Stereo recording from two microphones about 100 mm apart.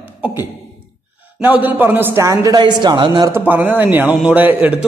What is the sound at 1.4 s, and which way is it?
Speech, 20° right (ahead or behind).